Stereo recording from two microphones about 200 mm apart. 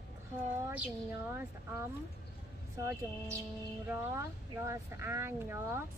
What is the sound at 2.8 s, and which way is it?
Speech, 15° right (ahead or behind).